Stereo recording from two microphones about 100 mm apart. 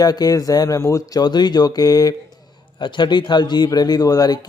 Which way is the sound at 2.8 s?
50° left (ahead or behind).